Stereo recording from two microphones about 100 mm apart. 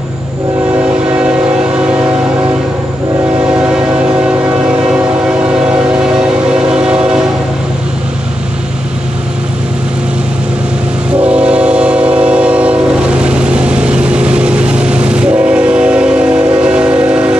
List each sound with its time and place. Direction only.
0.8 s train: 15° right (ahead or behind)
3.3 s train: 15° right (ahead or behind)
11.1 s train: 10° right (ahead or behind)